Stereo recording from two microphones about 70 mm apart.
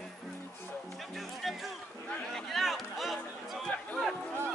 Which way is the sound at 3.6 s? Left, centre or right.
Centre.